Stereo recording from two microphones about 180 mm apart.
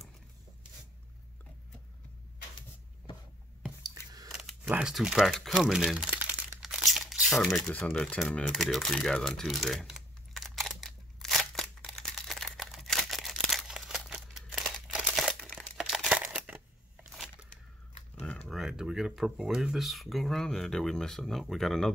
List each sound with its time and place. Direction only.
3.8 s squish: 20° right (ahead or behind)
4.3 s crumpling: centre (ahead or behind)
18.5 s speech: 5° right (ahead or behind)